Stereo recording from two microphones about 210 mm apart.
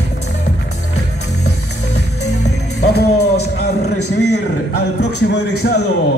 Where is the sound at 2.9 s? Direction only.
50° left (ahead or behind).